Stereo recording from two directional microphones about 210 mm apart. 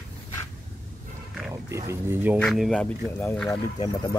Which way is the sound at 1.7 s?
15° right (ahead or behind).